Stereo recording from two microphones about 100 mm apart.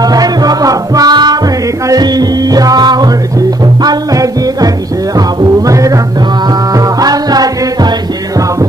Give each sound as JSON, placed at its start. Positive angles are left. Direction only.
{"t": 0.0, "sound": "music", "side_deg": -40}